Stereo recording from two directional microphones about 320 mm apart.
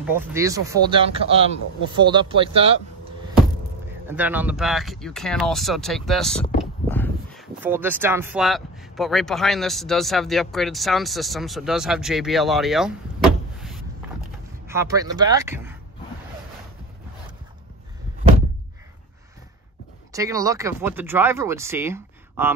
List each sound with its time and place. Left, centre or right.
0.0 s speech: centre
4.1 s a man's voice: centre
6.6 s a sound: centre
7.6 s a man's voice: centre
20.1 s speech: centre